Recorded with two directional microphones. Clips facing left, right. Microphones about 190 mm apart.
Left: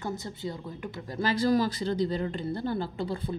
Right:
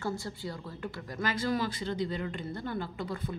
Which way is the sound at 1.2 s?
35° left (ahead or behind).